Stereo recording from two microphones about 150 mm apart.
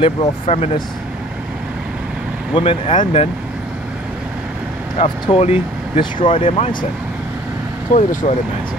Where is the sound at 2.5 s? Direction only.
35° left (ahead or behind).